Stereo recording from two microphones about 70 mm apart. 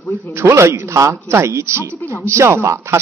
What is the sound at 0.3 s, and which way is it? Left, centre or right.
A man's voice, right.